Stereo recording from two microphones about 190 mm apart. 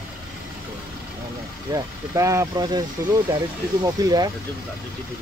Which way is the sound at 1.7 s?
15° right (ahead or behind).